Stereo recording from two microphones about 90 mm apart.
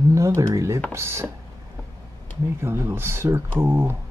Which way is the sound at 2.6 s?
25° right (ahead or behind).